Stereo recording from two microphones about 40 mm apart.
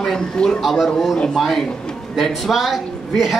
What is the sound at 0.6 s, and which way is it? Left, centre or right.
A man's voice, centre.